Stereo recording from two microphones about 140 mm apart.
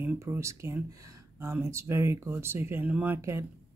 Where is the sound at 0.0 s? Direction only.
15° right (ahead or behind).